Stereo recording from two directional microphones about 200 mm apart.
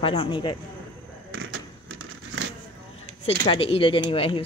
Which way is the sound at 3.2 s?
25° left (ahead or behind).